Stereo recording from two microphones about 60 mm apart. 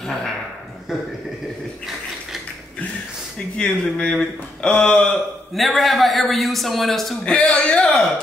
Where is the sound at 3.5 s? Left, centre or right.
Centre.